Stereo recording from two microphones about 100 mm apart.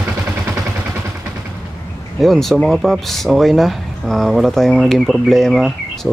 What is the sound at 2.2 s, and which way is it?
Speech, centre (ahead or behind).